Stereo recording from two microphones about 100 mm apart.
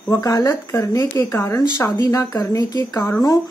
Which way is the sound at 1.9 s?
40° left (ahead or behind).